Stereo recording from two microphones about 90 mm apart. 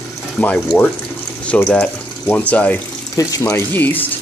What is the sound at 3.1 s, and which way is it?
Speech, 40° left (ahead or behind).